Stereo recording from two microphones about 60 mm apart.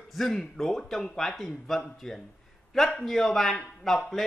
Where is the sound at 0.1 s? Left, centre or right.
Centre.